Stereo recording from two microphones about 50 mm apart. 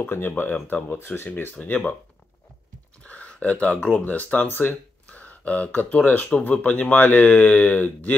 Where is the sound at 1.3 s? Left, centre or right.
Left.